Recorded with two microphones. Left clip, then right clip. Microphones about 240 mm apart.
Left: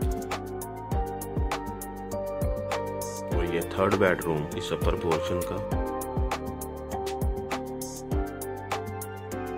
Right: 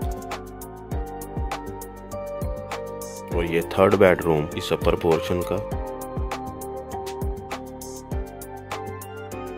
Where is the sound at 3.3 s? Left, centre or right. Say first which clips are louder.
Right 8 dB; right.